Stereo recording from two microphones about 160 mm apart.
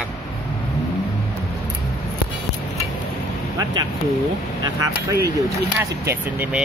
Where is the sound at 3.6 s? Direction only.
20° right (ahead or behind).